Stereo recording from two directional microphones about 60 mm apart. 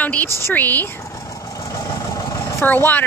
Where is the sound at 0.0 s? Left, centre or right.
Left.